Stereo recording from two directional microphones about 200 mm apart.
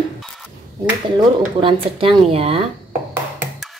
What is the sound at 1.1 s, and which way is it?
A woman's voice, 25° right (ahead or behind).